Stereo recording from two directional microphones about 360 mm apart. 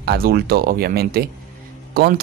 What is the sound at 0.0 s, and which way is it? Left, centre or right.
Speech, right.